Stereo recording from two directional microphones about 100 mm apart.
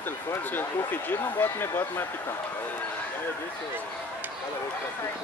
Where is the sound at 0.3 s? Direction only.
20° left (ahead or behind).